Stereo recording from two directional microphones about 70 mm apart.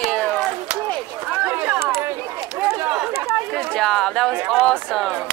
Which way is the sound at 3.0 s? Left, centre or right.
Centre.